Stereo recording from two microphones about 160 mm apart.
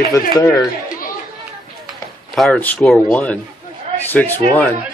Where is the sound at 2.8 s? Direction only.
5° left (ahead or behind).